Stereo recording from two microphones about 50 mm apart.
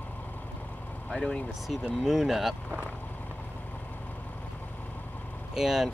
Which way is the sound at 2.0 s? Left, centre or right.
Centre.